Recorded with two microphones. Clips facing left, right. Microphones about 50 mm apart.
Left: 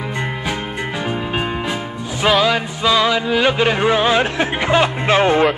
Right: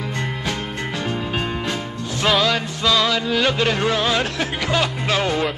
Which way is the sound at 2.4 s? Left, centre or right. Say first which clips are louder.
Left 3 dB; centre.